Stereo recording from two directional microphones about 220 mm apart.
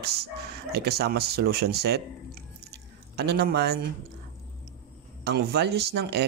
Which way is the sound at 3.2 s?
45° right (ahead or behind).